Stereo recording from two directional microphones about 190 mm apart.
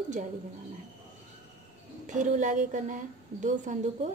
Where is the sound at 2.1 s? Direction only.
40° right (ahead or behind).